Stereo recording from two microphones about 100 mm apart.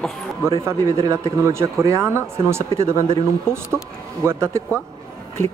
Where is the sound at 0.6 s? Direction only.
30° right (ahead or behind).